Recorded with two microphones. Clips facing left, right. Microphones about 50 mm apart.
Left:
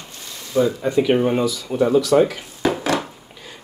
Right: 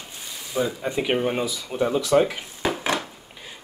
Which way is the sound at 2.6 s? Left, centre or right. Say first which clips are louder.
Left 5 dB; centre.